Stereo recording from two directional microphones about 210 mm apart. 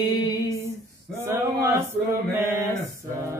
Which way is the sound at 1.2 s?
10° right (ahead or behind).